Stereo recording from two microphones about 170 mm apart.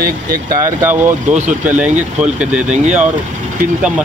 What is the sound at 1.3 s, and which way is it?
Speech, 45° right (ahead or behind).